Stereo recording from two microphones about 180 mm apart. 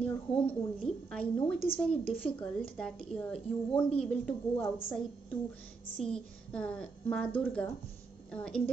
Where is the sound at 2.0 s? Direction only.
30° left (ahead or behind).